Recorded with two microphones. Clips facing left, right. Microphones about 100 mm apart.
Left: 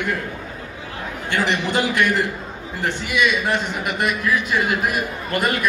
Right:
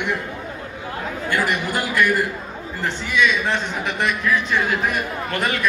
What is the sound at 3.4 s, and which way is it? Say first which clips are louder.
Speech: left 1 dB; 5° left (ahead or behind).